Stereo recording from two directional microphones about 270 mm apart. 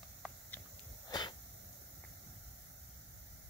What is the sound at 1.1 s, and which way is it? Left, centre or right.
Sneeze, centre.